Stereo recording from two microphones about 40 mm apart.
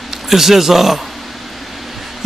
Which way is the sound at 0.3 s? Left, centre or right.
Centre.